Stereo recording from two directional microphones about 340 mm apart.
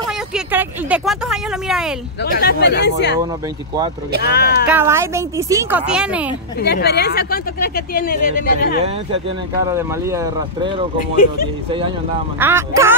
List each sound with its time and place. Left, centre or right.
0.3 s speech: centre
2.3 s speech: left
4.3 s speech: left
4.6 s speech: centre
6.6 s speech: left
9.7 s speech: centre
12.4 s speech: centre